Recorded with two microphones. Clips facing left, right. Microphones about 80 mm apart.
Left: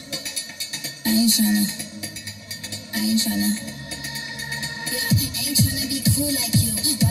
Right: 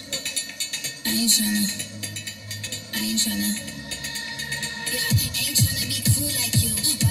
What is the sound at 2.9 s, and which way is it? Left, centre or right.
Music, centre.